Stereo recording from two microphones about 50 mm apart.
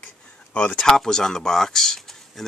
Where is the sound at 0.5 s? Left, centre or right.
Left.